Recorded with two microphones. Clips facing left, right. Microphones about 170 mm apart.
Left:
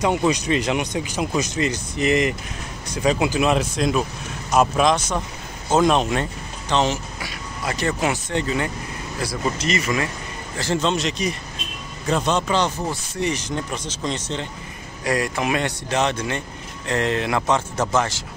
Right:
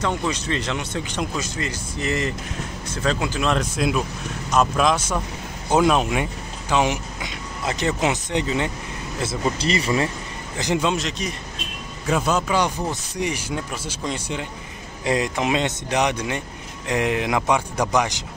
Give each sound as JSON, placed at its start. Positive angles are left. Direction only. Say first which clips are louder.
{"t": 0.0, "sound": "speech", "louder": "left 5 dB", "side_deg": 15}
{"t": 3.7, "sound": "speech", "louder": "left 1 dB", "side_deg": -5}
{"t": 10.6, "sound": "speech", "louder": "even", "side_deg": -15}
{"t": 11.0, "sound": "speech", "louder": "left 3 dB", "side_deg": 0}